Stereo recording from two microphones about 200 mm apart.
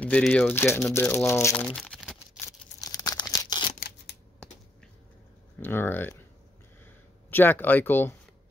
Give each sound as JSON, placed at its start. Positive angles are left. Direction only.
{"t": 0.0, "sound": "speech", "side_deg": 5}
{"t": 1.8, "sound": "a sound", "side_deg": 0}
{"t": 2.8, "sound": "a sound", "side_deg": 20}
{"t": 3.8, "sound": "scissors", "side_deg": 55}
{"t": 5.6, "sound": "speech", "side_deg": 10}
{"t": 7.2, "sound": "speech", "side_deg": 10}